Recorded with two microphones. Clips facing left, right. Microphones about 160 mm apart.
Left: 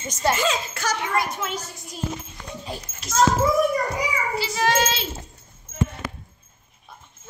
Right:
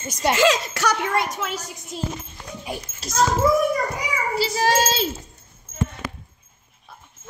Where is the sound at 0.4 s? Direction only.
75° right (ahead or behind).